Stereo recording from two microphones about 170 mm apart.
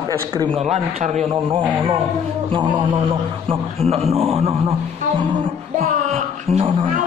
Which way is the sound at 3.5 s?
35° right (ahead or behind).